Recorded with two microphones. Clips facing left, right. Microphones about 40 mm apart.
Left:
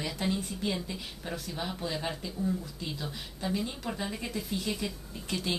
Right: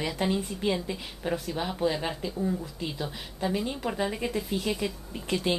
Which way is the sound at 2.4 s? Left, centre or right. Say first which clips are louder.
Right 2 dB; right.